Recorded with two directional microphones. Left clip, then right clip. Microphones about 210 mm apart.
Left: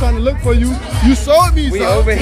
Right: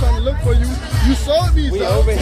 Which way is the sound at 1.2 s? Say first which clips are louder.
Left 7 dB; 50° left (ahead or behind).